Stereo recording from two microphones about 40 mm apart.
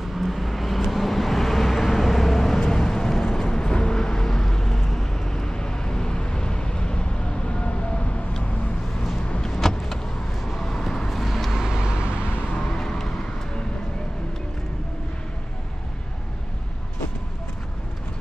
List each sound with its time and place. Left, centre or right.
0.0 s vehicle: centre; by 8.2 s left
9.5 s vehicle: centre
11.1 s vehicle: centre
11.5 s vehicle: centre
12.7 s music: centre